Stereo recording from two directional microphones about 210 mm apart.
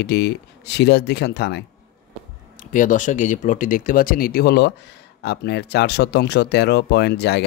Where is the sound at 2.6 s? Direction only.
40° left (ahead or behind).